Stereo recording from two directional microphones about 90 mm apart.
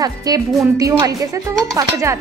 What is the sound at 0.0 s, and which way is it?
A woman's voice, 45° right (ahead or behind).